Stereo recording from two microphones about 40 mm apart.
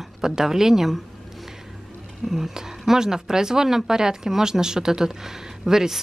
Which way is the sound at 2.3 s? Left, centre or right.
Centre.